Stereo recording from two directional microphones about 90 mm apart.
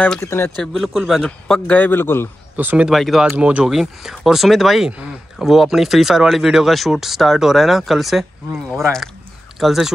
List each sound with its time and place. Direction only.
0.2 s speech: 30° left (ahead or behind)
0.6 s a man's voice: centre (ahead or behind); by 2.2 s 25° left (ahead or behind)
2.5 s speech: 20° right (ahead or behind)
2.9 s speech: centre (ahead or behind)
3.3 s speech: 20° right (ahead or behind)
3.6 s speech: 5° right (ahead or behind)
9.6 s speech: centre (ahead or behind)